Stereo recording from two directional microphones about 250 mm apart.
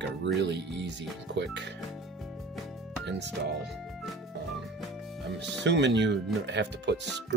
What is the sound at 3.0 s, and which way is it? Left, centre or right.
Speech, right.